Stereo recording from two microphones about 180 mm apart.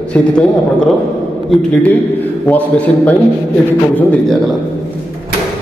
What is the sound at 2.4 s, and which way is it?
Speech, 10° left (ahead or behind).